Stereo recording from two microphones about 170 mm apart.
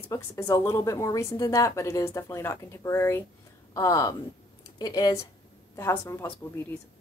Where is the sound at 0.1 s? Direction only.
15° left (ahead or behind).